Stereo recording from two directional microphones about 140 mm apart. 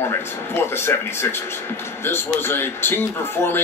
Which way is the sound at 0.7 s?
15° left (ahead or behind).